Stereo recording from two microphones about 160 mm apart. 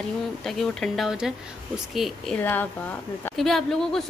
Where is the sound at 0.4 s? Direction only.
Centre (ahead or behind).